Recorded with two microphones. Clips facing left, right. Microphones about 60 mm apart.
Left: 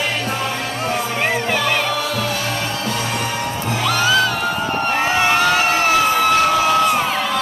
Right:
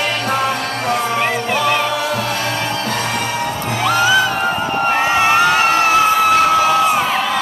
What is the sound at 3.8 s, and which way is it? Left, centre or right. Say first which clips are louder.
Music: right 3 dB; right.